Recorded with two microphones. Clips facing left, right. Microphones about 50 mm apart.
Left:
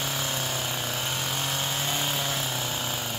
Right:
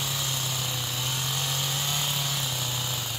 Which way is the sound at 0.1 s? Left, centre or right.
Left.